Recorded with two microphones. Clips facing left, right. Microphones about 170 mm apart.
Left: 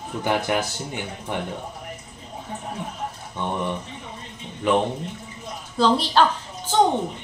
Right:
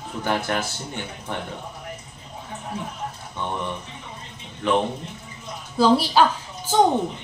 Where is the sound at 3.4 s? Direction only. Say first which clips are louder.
Left 2 dB; 15° left (ahead or behind).